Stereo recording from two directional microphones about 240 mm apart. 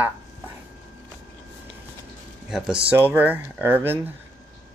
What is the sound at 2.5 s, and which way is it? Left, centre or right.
Speech, centre.